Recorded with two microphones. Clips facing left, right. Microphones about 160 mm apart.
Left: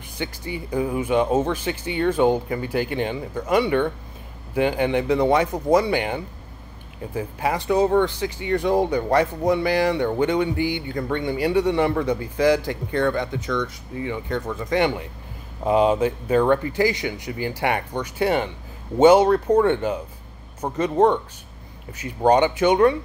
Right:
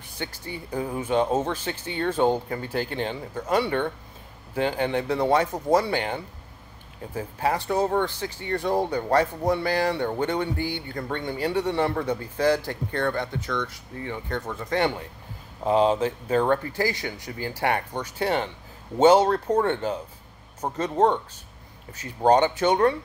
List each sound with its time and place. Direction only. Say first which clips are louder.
0.2 s a man's voice: left 5 dB; 15° left (ahead or behind)